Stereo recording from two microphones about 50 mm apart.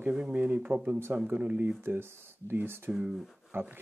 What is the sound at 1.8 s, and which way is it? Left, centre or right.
Speech, right.